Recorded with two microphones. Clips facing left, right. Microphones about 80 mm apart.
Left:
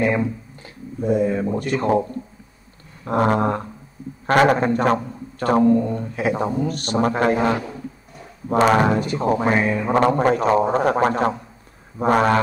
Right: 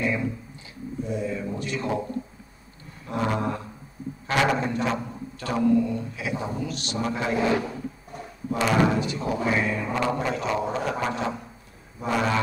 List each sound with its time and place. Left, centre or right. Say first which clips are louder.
0.0 s speech: left 6 dB; left
3.1 s a man's voice: left 8 dB; left